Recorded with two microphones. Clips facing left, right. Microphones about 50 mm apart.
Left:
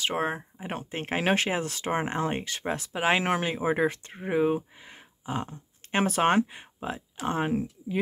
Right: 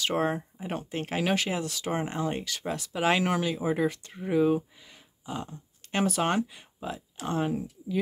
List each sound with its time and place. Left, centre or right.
0.0 s speech: left